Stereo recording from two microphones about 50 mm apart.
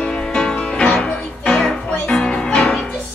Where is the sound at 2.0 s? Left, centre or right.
Centre.